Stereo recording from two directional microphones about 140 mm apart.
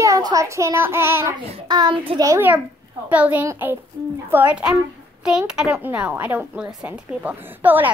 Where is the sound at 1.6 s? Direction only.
30° right (ahead or behind).